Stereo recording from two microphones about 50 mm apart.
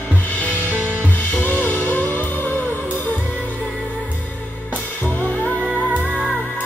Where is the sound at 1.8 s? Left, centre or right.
Left.